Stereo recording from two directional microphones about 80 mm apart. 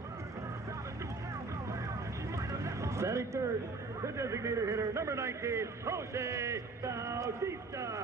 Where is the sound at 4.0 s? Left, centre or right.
Right.